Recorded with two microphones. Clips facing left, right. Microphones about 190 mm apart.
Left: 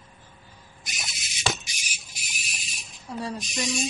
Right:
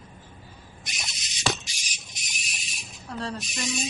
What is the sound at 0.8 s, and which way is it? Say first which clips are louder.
Owl: left 1 dB; centre (ahead or behind).